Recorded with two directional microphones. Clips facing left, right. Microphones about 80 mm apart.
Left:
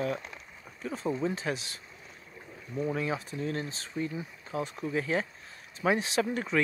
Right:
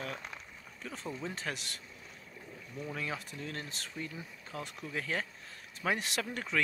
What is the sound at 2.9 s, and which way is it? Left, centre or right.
Speech, left.